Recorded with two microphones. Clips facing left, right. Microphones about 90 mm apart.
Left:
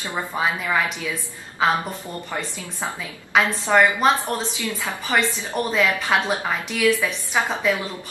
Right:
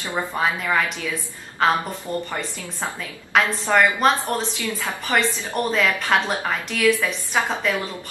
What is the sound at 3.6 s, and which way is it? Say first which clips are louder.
Speech: left 2 dB; 15° left (ahead or behind).